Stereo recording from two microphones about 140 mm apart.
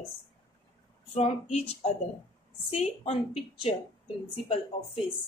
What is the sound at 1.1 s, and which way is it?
A woman's voice, 50° left (ahead or behind).